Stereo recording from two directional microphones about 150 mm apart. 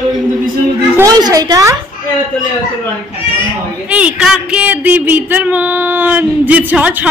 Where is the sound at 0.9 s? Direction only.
25° right (ahead or behind).